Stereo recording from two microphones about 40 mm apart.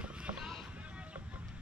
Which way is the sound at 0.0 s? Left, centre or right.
Right.